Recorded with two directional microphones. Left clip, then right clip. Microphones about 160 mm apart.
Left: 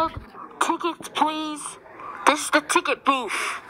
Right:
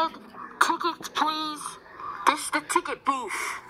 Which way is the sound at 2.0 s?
55° left (ahead or behind).